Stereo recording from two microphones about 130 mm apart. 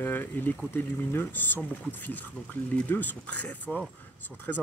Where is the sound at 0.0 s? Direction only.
15° left (ahead or behind).